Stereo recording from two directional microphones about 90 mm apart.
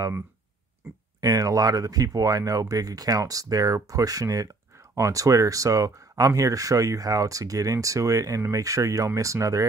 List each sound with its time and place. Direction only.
1.2 s speech: 45° right (ahead or behind)